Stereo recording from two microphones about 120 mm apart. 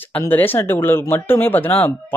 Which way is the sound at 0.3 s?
15° left (ahead or behind).